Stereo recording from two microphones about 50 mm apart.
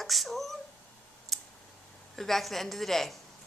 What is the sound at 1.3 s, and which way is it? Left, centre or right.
Clicking, centre.